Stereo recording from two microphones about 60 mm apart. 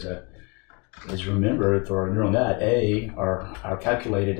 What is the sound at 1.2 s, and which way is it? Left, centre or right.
Speech, centre.